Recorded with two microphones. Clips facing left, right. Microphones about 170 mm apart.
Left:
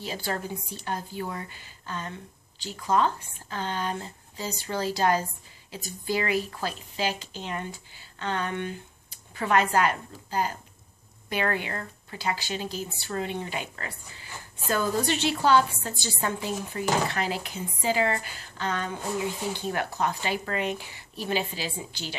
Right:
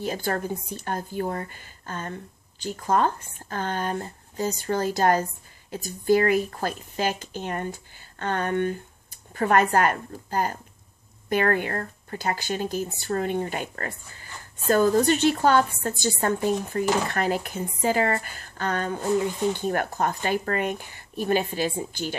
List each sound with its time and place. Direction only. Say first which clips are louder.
0.0 s a woman's voice: right 5 dB; 50° right (ahead or behind)